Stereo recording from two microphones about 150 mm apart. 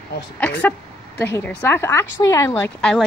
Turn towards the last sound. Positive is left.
turn(degrees=5)  # may be behind; listen again after turning